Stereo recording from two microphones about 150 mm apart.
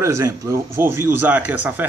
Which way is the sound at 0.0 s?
20° right (ahead or behind).